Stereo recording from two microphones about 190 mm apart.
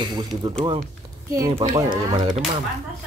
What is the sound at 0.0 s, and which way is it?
Speech, 20° right (ahead or behind).